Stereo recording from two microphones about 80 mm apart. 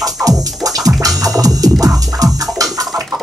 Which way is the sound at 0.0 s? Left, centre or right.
Right.